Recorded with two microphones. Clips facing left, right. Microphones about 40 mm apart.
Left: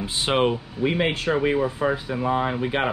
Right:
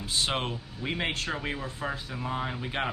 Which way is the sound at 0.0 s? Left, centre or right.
Left.